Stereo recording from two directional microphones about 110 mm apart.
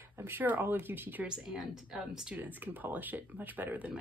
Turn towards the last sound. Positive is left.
turn(degrees=-15)  # may be behind; listen again after turning